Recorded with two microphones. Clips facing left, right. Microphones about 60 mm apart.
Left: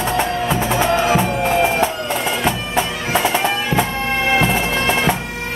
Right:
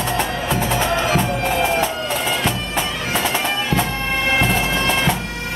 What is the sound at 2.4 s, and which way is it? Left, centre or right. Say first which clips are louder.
Bagpipes: left 3 dB; centre.